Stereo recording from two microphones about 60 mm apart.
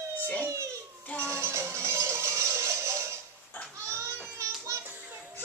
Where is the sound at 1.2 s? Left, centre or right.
Right.